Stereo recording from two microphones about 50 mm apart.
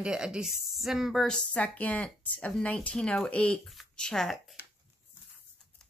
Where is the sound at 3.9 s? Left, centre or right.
Centre.